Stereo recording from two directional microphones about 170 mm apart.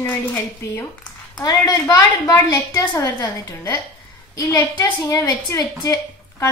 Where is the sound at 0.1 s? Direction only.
15° left (ahead or behind).